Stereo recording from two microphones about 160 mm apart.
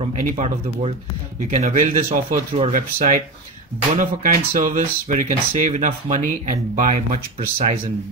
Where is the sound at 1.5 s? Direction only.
50° right (ahead or behind).